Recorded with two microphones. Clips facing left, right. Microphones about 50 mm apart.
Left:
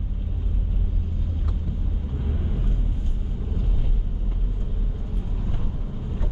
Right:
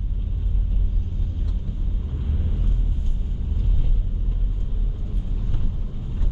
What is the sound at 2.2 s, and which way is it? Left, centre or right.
Vehicle, centre.